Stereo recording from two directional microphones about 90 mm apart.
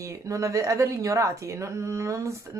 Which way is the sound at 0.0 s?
35° right (ahead or behind).